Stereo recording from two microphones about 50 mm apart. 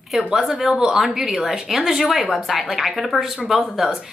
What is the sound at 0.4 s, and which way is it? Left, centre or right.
Speech, centre.